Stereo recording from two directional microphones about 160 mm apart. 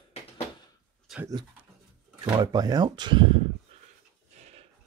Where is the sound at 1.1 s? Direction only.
Centre (ahead or behind).